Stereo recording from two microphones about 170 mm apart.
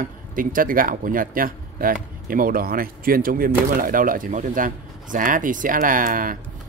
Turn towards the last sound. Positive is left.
turn(degrees=-55)  # may be behind; listen again after turning